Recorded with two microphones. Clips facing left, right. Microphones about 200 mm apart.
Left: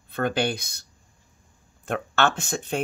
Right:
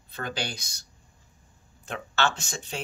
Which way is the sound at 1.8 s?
55° left (ahead or behind).